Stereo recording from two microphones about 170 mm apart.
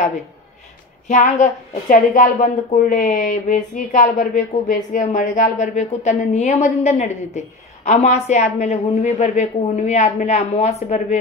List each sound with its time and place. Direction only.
1.0 s a woman's voice: 45° left (ahead or behind)